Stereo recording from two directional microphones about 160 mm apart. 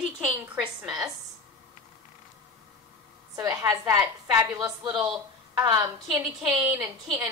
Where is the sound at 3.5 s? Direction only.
20° right (ahead or behind).